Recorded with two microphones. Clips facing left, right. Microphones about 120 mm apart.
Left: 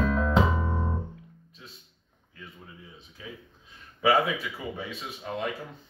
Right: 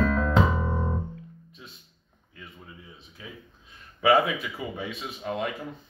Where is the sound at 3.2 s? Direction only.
5° right (ahead or behind).